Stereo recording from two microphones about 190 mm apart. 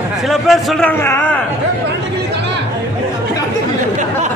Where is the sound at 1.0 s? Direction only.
10° left (ahead or behind).